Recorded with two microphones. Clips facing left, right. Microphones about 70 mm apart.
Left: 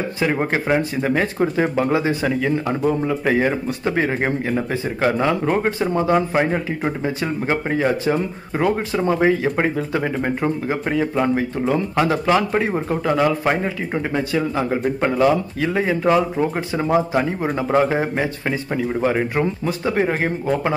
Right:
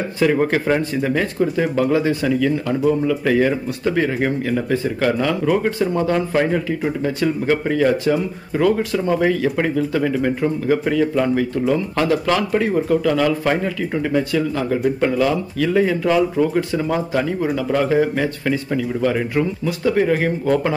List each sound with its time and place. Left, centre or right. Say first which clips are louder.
0.2 s speech: right 4 dB; left
5.9 s speech: left 3 dB; centre